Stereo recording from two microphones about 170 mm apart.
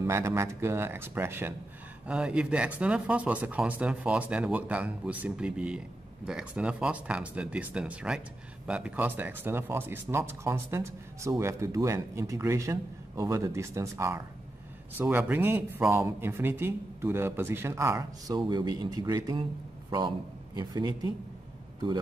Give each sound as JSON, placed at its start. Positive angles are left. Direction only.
{"t": 0.0, "sound": "speech", "side_deg": -15}